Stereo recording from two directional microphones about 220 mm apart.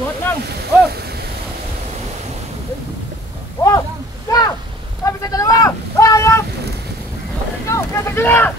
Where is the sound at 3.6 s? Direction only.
15° left (ahead or behind).